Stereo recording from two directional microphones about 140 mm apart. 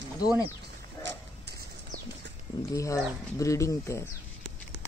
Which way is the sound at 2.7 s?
20° left (ahead or behind).